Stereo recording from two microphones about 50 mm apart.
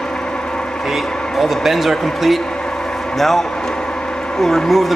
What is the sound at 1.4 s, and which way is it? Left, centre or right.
A man's voice, centre.